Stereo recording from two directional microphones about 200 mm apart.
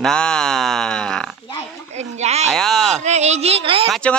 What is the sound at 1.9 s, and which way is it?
Speech, 35° right (ahead or behind).